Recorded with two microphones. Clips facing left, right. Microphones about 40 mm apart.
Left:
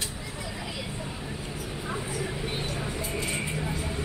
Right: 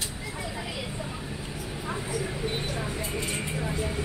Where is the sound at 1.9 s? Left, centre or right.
Centre.